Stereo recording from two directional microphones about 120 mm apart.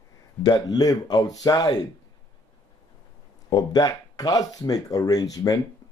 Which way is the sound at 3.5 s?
35° left (ahead or behind).